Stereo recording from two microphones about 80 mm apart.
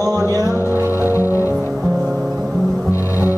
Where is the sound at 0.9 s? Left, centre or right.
Left.